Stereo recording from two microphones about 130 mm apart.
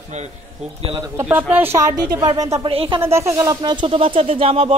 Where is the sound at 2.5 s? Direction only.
45° right (ahead or behind).